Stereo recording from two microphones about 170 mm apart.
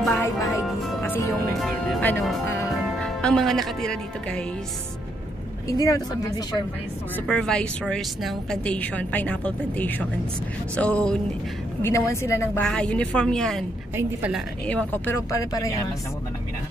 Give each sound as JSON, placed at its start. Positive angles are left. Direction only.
{"t": 0.1, "sound": "music", "side_deg": 15}
{"t": 1.5, "sound": "speech", "side_deg": 5}
{"t": 2.7, "sound": "speech", "side_deg": 0}
{"t": 5.7, "sound": "a woman's voice", "side_deg": 20}
{"t": 7.2, "sound": "a woman's voice", "side_deg": 5}
{"t": 11.8, "sound": "a woman's voice", "side_deg": 15}